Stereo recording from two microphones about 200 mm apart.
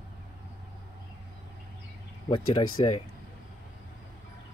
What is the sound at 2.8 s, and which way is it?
Speech, 30° left (ahead or behind).